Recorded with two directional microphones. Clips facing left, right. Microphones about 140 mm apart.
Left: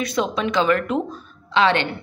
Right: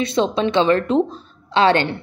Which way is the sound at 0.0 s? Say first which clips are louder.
Right 4 dB; 25° right (ahead or behind).